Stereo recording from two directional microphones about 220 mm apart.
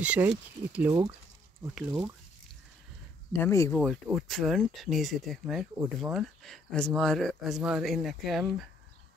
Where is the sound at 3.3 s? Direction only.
10° left (ahead or behind).